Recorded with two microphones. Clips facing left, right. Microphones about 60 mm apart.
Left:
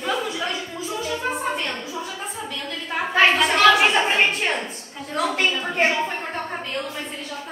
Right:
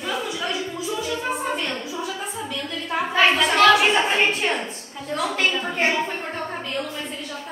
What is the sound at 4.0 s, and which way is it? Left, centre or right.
A woman's voice, centre.